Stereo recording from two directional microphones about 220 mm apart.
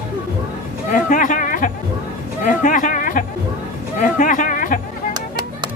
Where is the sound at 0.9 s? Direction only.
35° left (ahead or behind).